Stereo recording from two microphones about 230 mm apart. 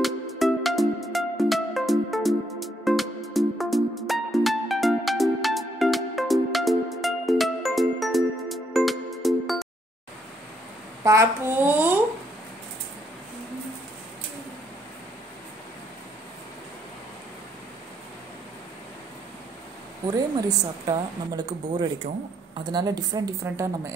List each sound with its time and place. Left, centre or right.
0.0 s music: centre
11.1 s speech: centre
20.1 s speech: centre